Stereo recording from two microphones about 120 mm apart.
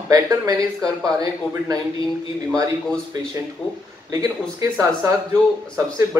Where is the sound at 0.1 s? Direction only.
30° right (ahead or behind).